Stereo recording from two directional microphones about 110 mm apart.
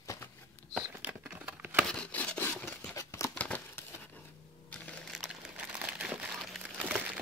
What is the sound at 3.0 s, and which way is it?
Crumpling, 25° left (ahead or behind).